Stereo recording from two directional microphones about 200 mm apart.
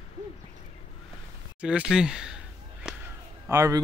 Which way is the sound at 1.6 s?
5° right (ahead or behind).